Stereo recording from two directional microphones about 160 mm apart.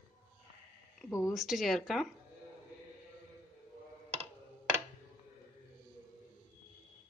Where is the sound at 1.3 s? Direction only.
Centre (ahead or behind).